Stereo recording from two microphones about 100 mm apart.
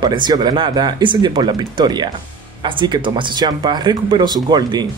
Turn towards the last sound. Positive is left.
turn(degrees=-45)  # may be behind; listen again after turning